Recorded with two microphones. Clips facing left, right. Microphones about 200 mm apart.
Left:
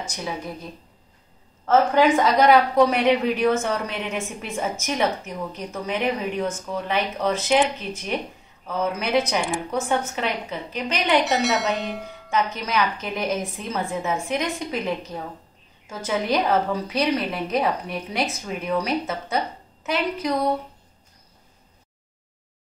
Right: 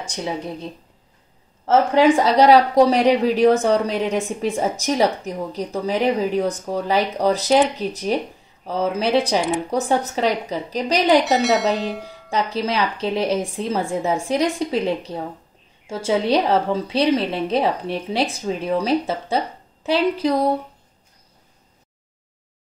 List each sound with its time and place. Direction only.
0.1 s a woman's voice: 30° right (ahead or behind)
1.7 s a woman's voice: 30° right (ahead or behind)
11.2 s speech: centre (ahead or behind)
12.3 s a woman's voice: 35° right (ahead or behind)